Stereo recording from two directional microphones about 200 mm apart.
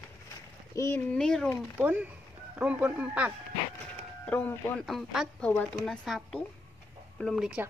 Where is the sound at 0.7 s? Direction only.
10° left (ahead or behind).